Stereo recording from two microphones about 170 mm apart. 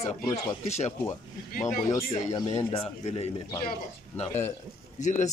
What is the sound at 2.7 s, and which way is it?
Speech, 35° left (ahead or behind).